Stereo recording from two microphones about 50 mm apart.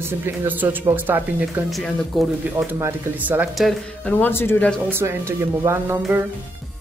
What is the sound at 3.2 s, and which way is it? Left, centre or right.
Speech, right.